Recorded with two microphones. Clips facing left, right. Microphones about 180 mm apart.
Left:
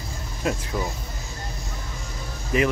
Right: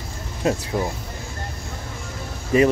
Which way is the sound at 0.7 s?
30° right (ahead or behind).